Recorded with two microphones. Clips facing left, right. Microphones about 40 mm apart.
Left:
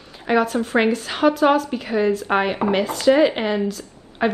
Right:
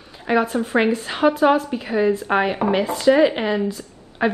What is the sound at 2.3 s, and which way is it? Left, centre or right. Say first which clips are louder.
A woman's voice: even; centre.